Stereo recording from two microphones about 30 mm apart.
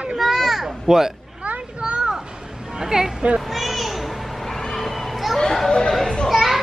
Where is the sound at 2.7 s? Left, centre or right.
Centre.